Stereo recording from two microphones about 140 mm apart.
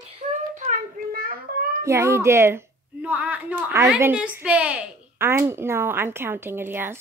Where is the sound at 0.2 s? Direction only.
60° right (ahead or behind).